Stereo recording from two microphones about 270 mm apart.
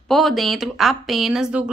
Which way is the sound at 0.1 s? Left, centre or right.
Centre.